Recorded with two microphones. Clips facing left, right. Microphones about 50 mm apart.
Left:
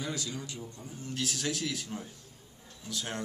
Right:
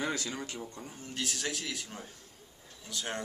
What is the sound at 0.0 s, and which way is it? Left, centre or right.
Speech, right.